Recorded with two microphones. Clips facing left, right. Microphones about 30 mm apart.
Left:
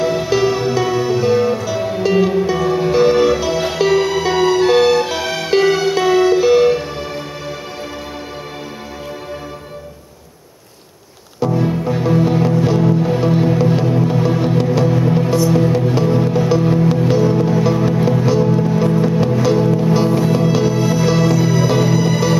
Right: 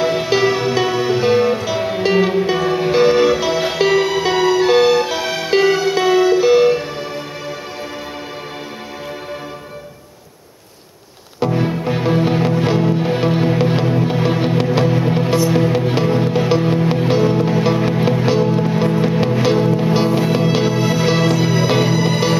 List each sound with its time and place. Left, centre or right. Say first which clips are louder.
0.0 s music: even; right; by 6.9 s centre
11.3 s music: left 1 dB; right